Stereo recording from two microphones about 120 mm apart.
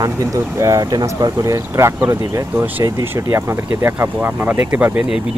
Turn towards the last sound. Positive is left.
turn(degrees=-20)  # may be behind; listen again after turning